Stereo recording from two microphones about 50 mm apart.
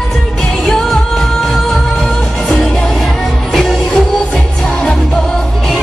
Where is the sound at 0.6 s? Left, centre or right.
Centre.